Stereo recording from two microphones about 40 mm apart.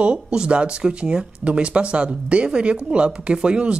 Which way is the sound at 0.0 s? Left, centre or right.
Right.